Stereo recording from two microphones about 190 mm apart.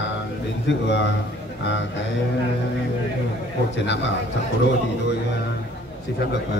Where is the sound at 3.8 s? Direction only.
65° left (ahead or behind).